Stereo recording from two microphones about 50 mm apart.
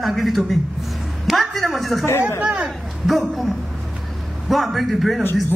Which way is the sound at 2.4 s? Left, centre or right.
Right.